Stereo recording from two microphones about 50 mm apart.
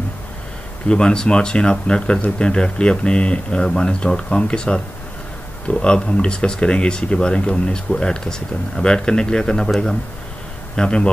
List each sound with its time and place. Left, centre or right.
0.8 s speech: centre
10.8 s speech: centre